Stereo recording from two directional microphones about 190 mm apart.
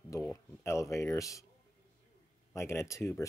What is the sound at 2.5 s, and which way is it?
Speech, 15° left (ahead or behind).